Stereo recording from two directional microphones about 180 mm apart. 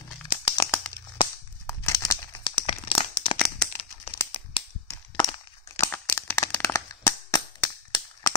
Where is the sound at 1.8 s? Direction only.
15° left (ahead or behind).